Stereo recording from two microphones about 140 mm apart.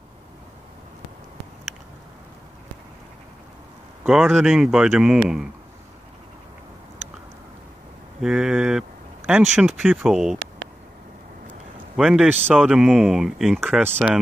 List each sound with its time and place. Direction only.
4.0 s speech: centre (ahead or behind)
8.2 s speech: 5° right (ahead or behind)
12.0 s speech: 5° right (ahead or behind)
13.8 s speech: 15° right (ahead or behind)